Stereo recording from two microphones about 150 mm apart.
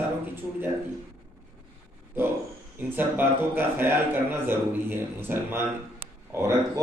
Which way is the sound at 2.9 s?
15° right (ahead or behind).